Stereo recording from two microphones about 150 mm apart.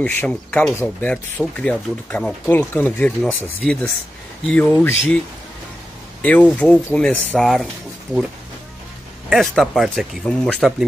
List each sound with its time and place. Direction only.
0.0 s speech: 10° left (ahead or behind)
6.2 s speech: 10° left (ahead or behind)
9.3 s speech: centre (ahead or behind)